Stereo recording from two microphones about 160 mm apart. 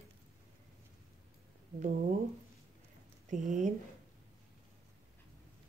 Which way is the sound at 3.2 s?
50° right (ahead or behind).